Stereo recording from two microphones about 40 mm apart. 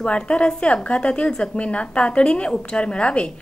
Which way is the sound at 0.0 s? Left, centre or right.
Left.